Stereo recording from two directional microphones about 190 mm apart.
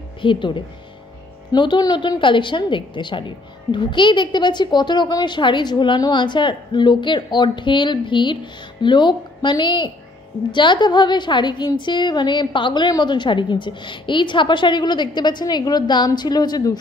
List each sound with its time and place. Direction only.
0.2 s a woman's voice: 25° left (ahead or behind)